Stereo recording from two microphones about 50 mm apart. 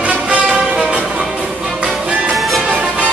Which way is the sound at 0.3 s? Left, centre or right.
Right.